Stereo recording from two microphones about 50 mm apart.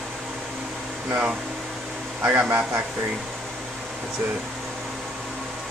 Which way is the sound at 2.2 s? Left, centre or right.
Right.